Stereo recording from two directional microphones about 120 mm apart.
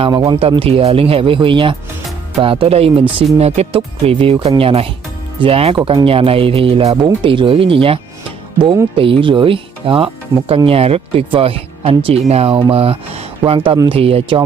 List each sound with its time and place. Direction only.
0.0 s speech: 45° right (ahead or behind)
0.4 s speech: 55° right (ahead or behind)
3.3 s speech: 60° right (ahead or behind)
12.5 s speech: 45° right (ahead or behind)